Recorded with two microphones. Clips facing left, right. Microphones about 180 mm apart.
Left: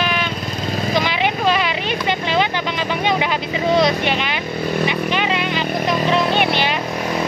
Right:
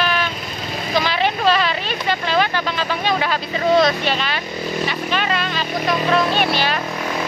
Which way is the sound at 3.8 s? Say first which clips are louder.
Even; 20° left (ahead or behind).